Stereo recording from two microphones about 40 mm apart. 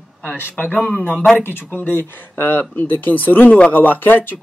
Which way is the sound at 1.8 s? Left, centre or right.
Left.